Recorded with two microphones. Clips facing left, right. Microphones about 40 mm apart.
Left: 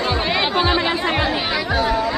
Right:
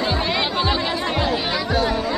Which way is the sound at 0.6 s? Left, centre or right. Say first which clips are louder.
Left 3 dB; left.